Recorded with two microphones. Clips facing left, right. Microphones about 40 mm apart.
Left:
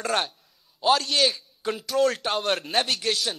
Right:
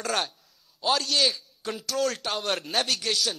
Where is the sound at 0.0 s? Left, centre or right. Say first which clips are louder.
Left 2 dB; centre.